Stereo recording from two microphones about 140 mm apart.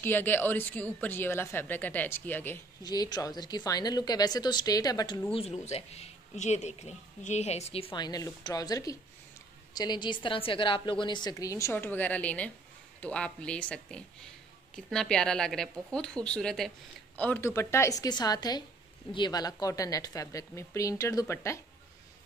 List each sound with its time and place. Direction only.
0.0 s a woman's voice: 15° left (ahead or behind)
2.8 s a woman's voice: 30° left (ahead or behind)
5.3 s speech: 45° left (ahead or behind)
8.0 s a woman's voice: 30° left (ahead or behind); by 16.7 s 5° left (ahead or behind)
17.2 s a woman's voice: 15° left (ahead or behind)